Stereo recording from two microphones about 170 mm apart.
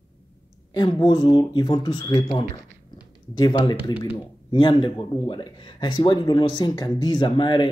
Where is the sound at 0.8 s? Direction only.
25° left (ahead or behind).